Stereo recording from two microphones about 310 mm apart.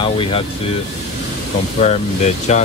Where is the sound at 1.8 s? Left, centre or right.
Left.